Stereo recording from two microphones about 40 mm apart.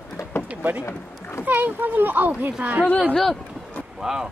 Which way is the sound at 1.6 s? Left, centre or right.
Right.